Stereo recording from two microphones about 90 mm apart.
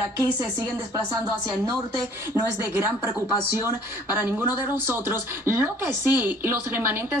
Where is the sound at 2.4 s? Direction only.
25° right (ahead or behind).